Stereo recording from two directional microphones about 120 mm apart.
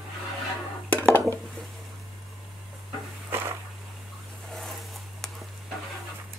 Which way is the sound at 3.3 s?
20° right (ahead or behind).